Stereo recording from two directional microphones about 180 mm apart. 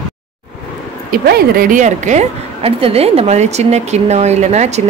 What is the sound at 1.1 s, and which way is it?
A woman's voice, 55° right (ahead or behind).